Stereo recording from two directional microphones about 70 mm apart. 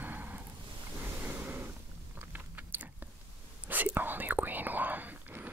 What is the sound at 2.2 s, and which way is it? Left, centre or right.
Biting, right.